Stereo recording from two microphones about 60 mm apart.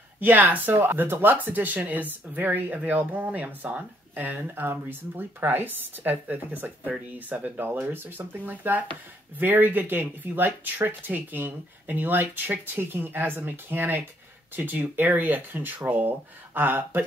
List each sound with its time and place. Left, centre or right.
0.2 s speech: right